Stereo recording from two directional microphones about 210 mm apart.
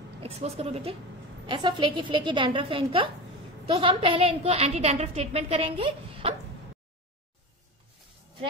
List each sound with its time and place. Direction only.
0.2 s a woman's voice: 30° right (ahead or behind)